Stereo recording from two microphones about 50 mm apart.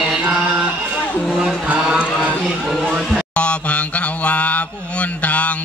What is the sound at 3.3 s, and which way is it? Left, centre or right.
Mantra, left.